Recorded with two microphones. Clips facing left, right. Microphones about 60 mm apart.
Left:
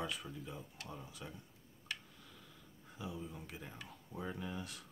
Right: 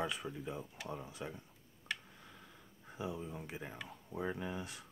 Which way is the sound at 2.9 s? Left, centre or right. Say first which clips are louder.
Right 4 dB; right.